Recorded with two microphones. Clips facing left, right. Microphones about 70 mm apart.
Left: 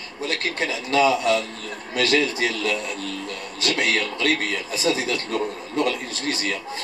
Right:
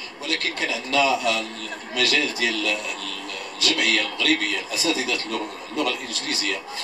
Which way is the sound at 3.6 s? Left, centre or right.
Left.